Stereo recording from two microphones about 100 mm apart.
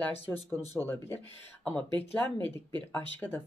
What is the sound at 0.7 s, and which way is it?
Speech, 20° left (ahead or behind).